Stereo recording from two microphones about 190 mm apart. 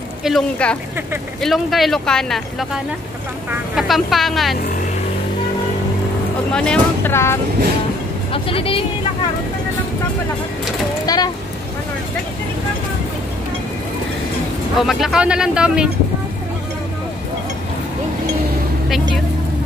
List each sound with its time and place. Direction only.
0.2 s speech: 5° left (ahead or behind)
6.5 s speech: 5° left (ahead or behind)
8.3 s speech: 30° left (ahead or behind)
11.1 s a sound: 20° left (ahead or behind)
14.8 s speech: centre (ahead or behind)